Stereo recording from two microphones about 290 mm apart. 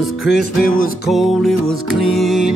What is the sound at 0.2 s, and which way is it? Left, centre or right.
Music, left.